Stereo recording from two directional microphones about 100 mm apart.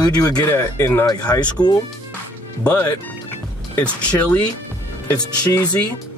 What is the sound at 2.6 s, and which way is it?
A man's voice, 15° left (ahead or behind).